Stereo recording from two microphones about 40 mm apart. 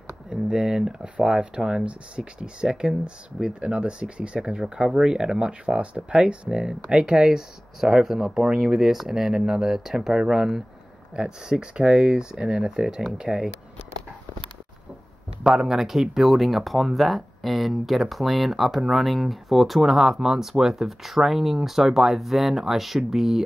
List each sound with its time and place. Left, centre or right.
0.3 s speech: centre
15.4 s speech: right
15.7 s speech: centre